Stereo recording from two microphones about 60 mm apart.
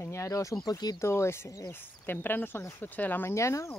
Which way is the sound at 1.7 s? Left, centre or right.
Left.